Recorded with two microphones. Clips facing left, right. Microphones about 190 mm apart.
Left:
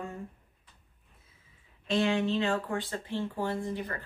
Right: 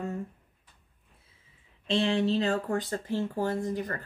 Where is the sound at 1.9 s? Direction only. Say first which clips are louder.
Right 1 dB; 30° right (ahead or behind).